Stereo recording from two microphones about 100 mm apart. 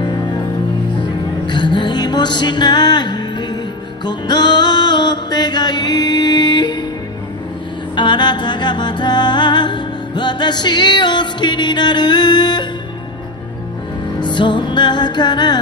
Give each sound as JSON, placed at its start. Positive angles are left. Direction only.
{"t": 1.5, "sound": "music", "side_deg": 50}
{"t": 7.9, "sound": "music", "side_deg": 50}
{"t": 14.2, "sound": "music", "side_deg": 50}